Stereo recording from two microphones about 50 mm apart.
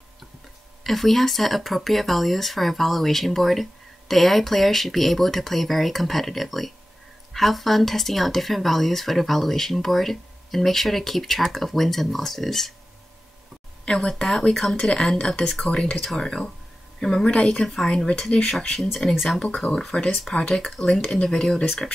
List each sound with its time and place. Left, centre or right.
0.8 s speech: centre
13.8 s speech: centre
17.3 s speech: left
17.6 s speech: centre
19.1 s speech: centre
19.4 s speech: left